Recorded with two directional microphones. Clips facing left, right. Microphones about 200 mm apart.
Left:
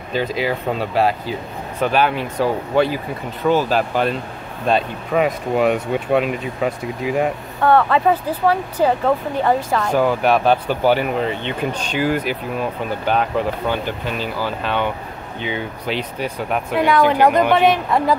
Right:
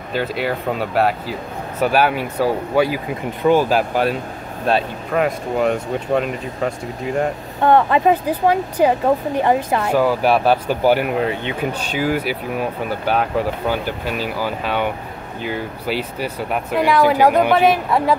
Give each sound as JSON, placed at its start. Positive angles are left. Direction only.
{"t": 0.1, "sound": "speech", "side_deg": -5}
{"t": 7.6, "sound": "speech", "side_deg": -20}
{"t": 9.9, "sound": "speech", "side_deg": -5}